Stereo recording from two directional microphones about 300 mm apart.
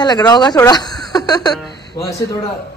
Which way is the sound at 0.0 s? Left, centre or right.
Centre.